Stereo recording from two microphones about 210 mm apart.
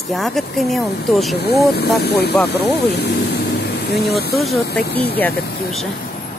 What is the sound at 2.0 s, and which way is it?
Speech, 50° left (ahead or behind).